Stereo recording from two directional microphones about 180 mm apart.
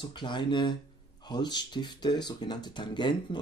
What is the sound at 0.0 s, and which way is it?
Speech, 25° left (ahead or behind).